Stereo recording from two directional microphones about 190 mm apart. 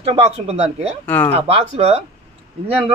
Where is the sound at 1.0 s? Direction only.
10° left (ahead or behind).